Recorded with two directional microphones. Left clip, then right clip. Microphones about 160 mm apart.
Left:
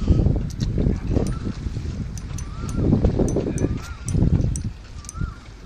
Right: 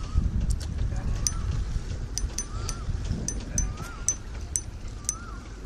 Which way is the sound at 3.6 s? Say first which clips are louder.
Left 6 dB; 45° right (ahead or behind).